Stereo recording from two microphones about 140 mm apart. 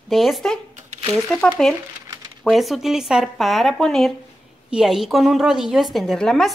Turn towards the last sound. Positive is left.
turn(degrees=5)  # may be behind; listen again after turning